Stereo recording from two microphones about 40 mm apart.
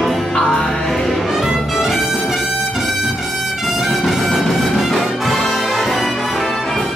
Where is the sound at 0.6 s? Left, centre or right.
Centre.